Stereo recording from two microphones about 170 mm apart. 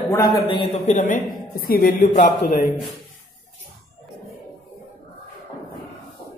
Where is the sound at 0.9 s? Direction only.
45° left (ahead or behind).